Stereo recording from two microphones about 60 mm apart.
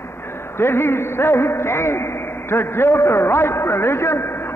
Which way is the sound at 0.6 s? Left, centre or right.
Left.